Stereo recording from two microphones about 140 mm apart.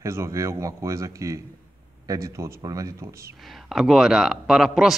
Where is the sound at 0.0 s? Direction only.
20° right (ahead or behind).